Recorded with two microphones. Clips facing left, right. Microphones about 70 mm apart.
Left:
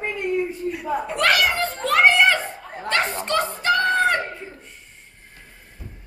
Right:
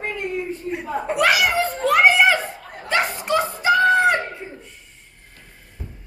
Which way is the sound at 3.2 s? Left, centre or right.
Centre.